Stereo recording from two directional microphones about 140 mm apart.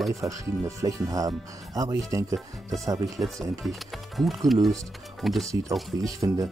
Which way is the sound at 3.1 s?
Centre (ahead or behind).